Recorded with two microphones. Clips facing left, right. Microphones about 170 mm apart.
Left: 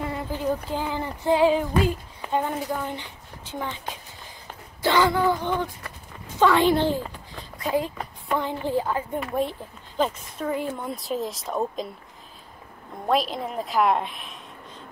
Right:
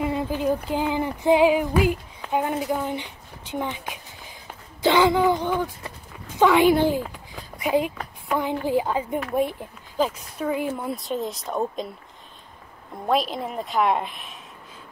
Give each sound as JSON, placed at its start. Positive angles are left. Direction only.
{"t": 0.0, "sound": "female singing", "side_deg": -15}
{"t": 2.3, "sound": "speech", "side_deg": -10}
{"t": 8.0, "sound": "a sound", "side_deg": -5}
{"t": 8.5, "sound": "a woman's voice", "side_deg": -15}
{"t": 13.0, "sound": "a woman's voice", "side_deg": 0}